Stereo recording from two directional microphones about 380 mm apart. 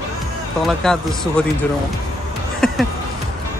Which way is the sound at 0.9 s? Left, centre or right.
Centre.